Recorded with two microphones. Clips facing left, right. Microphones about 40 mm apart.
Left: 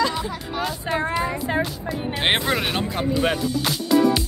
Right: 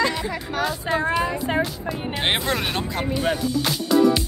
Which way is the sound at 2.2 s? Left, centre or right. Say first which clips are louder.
Left 2 dB; centre.